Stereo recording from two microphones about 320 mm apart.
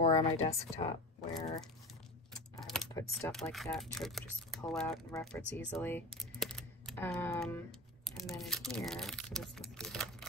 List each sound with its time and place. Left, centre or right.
0.0 s speech: centre
2.5 s speech: centre